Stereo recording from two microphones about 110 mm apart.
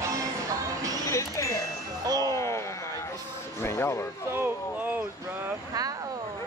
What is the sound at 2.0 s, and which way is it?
Speech, 35° right (ahead or behind).